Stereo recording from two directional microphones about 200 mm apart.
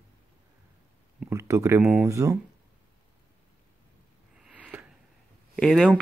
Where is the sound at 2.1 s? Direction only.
15° right (ahead or behind).